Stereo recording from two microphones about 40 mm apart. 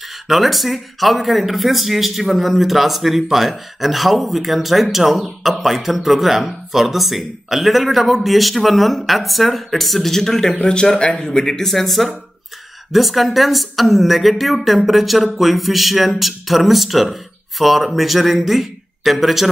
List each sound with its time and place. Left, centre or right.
0.3 s speech: centre